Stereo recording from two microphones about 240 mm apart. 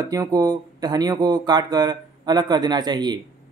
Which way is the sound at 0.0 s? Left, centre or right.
Centre.